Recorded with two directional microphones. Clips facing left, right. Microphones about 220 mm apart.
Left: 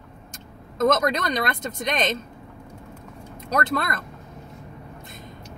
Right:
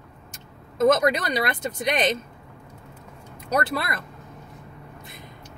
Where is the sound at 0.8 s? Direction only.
10° right (ahead or behind).